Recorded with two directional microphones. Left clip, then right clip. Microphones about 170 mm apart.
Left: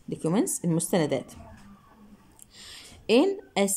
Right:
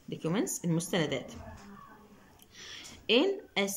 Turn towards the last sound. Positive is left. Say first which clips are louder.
# left 5 dB
turn(degrees=30)  # may be behind; listen again after turning